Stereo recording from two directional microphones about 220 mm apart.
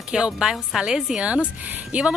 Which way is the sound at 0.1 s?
5° right (ahead or behind).